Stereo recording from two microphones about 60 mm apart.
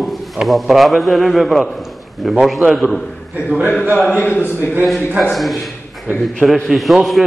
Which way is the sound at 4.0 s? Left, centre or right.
Left.